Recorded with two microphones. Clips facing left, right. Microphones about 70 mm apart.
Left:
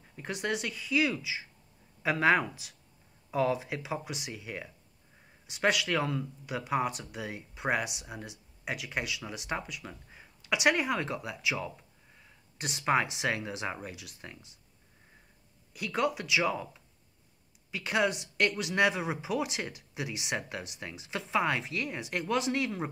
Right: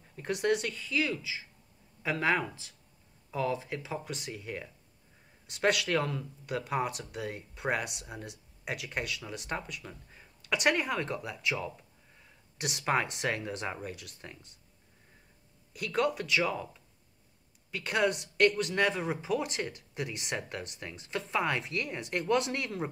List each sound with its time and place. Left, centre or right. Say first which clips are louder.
0.1 s speech: right 4 dB; centre
0.7 s speech: left 3 dB; centre
12.5 s speech: left 2 dB; centre
15.7 s speech: right 1 dB; centre
17.6 s speech: even; centre